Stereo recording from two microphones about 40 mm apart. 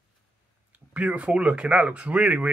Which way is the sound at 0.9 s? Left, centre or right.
Right.